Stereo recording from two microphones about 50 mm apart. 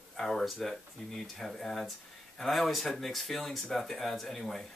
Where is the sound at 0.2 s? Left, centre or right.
Centre.